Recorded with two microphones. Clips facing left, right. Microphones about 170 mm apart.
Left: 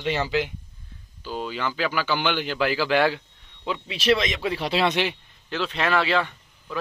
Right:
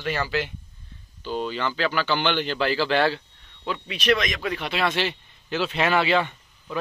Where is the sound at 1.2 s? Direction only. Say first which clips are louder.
Right 2 dB; 5° left (ahead or behind); by 4.9 s 30° left (ahead or behind).